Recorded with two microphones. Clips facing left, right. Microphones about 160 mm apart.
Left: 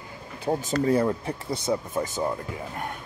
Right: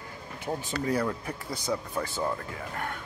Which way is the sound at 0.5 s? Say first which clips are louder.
Left 7 dB; 35° left (ahead or behind).